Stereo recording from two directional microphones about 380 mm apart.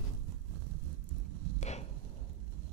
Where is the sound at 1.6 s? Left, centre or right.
Centre.